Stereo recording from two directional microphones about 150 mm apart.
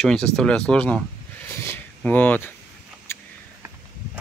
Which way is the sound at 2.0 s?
10° left (ahead or behind).